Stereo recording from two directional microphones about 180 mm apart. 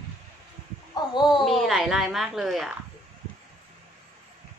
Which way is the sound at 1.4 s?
Centre (ahead or behind).